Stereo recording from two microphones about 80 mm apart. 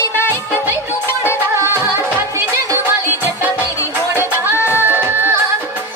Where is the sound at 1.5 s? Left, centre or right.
Right.